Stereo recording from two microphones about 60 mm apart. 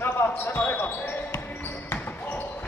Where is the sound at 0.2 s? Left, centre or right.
Left.